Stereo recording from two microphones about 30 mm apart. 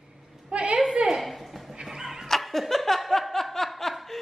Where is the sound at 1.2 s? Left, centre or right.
Centre.